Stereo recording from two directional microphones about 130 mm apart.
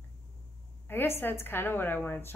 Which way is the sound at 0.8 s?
15° left (ahead or behind).